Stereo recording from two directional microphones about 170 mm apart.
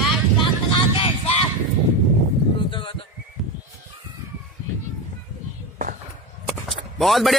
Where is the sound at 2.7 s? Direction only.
30° left (ahead or behind).